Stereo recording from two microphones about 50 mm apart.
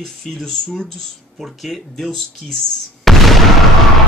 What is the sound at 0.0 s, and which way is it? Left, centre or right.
Speech, centre.